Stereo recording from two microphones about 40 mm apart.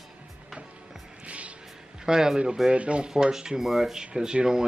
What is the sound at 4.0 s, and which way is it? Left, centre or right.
Speech, right.